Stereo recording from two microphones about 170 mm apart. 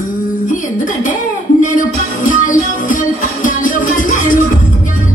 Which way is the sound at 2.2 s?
50° left (ahead or behind).